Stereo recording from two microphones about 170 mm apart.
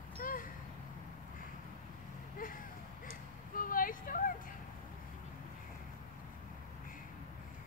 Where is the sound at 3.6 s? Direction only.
55° left (ahead or behind).